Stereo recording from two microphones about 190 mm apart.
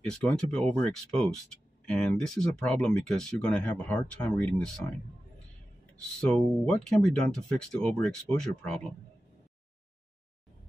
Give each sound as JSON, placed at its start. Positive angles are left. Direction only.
{"t": 0.0, "sound": "speech", "side_deg": 5}
{"t": 6.3, "sound": "speech", "side_deg": 5}